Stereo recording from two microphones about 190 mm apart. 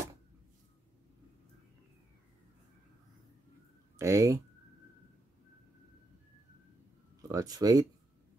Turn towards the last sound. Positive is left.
turn(degrees=-20)  # may be behind; listen again after turning